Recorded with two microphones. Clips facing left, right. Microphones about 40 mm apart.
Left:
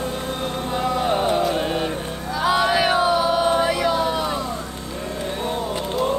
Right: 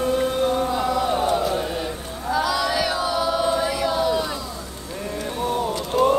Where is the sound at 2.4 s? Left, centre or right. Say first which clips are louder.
Left 5 dB; left.